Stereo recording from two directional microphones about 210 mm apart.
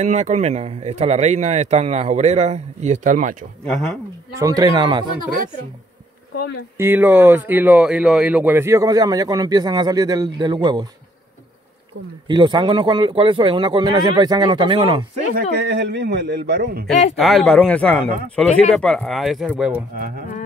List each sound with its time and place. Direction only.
0.0 s speech: 30° right (ahead or behind)
4.4 s speech: 15° right (ahead or behind)
6.8 s speech: 10° right (ahead or behind)
12.3 s a man's voice: 20° right (ahead or behind)
15.3 s a man's voice: 55° right (ahead or behind)
16.8 s speech: centre (ahead or behind)
20.0 s a man's voice: 45° right (ahead or behind)